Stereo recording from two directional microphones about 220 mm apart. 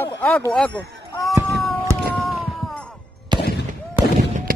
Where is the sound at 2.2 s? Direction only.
Centre (ahead or behind).